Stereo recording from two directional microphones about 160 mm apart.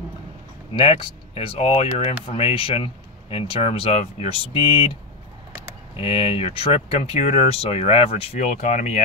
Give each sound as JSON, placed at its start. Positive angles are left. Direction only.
{"t": 0.7, "sound": "speech", "side_deg": 35}
{"t": 5.9, "sound": "speech", "side_deg": 35}